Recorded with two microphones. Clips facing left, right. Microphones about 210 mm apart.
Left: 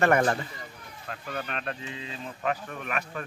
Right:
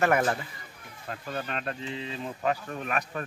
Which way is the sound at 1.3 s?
30° right (ahead or behind).